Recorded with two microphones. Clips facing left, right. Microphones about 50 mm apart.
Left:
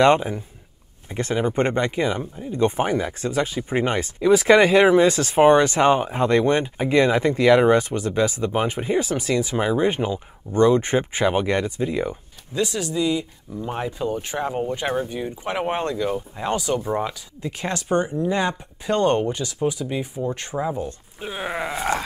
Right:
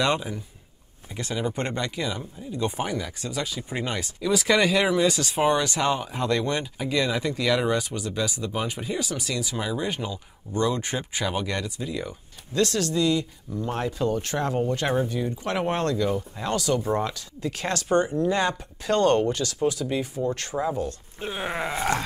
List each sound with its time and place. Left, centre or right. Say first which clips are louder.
0.0 s speech: left 8 dB; left
12.5 s speech: even; centre
21.2 s a sound: left 2 dB; centre